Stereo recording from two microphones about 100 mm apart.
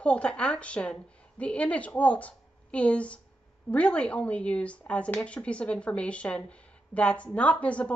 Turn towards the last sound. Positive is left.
turn(degrees=15)  # may be behind; listen again after turning